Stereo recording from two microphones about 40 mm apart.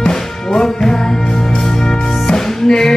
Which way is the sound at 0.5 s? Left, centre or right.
Centre.